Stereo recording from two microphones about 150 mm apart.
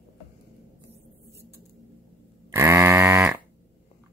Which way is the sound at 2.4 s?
20° right (ahead or behind).